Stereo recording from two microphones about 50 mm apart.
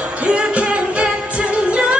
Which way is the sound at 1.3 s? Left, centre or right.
Right.